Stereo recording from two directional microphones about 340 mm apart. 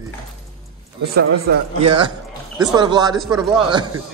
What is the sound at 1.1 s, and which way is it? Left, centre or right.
Speech, right.